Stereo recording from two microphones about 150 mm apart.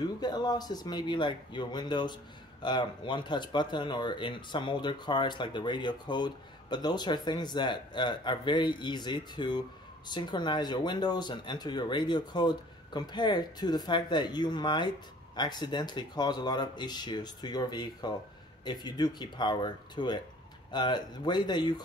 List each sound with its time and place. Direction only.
0.0 s speech: 30° left (ahead or behind)